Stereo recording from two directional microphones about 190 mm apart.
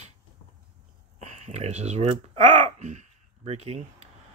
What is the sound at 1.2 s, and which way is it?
Speech, 35° right (ahead or behind).